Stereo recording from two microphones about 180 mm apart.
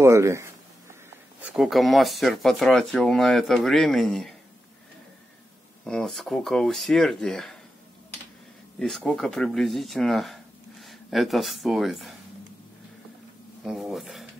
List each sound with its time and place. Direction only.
0.0 s speech: 15° right (ahead or behind)
1.4 s speech: centre (ahead or behind)
5.9 s speech: 5° left (ahead or behind)
8.7 s speech: 5° left (ahead or behind)
13.7 s speech: centre (ahead or behind)